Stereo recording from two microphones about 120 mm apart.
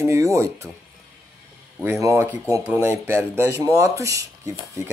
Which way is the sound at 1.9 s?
25° right (ahead or behind).